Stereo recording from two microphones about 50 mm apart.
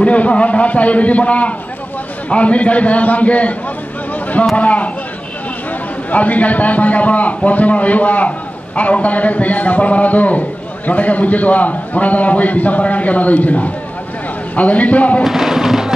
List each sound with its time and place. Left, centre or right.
0.0 s a man's voice: left
4.1 s a sound: left
4.6 s a man's voice: left
6.0 s a man's voice: left
15.2 s music: centre